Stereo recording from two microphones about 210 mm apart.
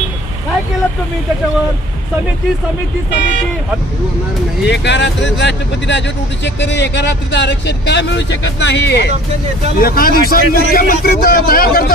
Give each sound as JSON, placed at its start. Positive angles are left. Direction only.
{"t": 4.6, "sound": "a man's voice", "side_deg": 55}